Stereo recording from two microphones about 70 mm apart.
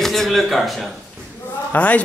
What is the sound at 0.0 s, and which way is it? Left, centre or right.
Speech, centre.